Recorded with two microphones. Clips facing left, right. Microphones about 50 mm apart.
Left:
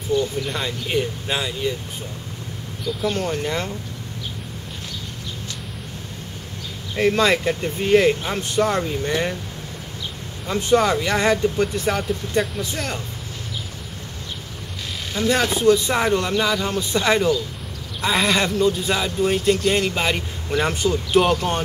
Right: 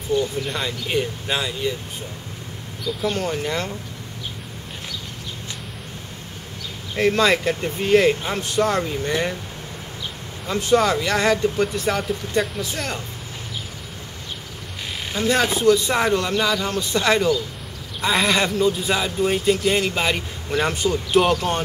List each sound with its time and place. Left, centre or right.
0.1 s speech: centre
3.0 s speech: centre
7.0 s speech: centre
10.4 s speech: centre
15.2 s speech: centre
15.7 s speech: centre